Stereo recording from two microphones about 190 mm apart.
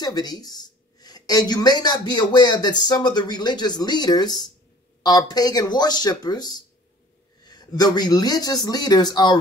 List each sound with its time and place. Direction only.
0.0 s speech: 20° left (ahead or behind)